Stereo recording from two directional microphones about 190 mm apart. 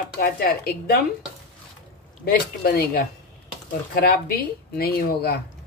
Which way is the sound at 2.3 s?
55° left (ahead or behind).